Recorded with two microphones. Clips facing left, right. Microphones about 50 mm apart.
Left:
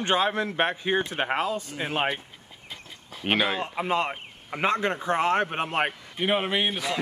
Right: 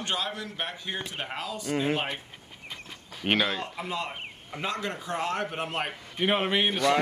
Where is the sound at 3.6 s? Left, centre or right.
Left.